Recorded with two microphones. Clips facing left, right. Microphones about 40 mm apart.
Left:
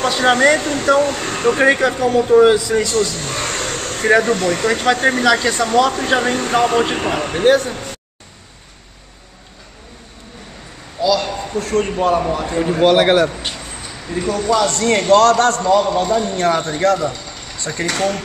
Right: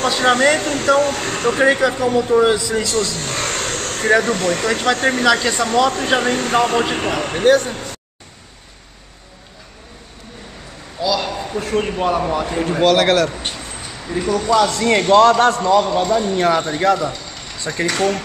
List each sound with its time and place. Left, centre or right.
0.0 s speech: centre
3.2 s a sound: centre
3.8 s speech: centre
11.1 s a sound: centre
11.5 s a man's voice: centre
12.8 s a man's voice: centre
14.0 s a man's voice: centre